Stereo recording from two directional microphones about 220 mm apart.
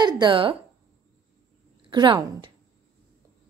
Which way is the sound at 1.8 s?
20° right (ahead or behind).